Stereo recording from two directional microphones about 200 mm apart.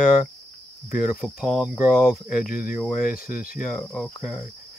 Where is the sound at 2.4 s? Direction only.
45° left (ahead or behind).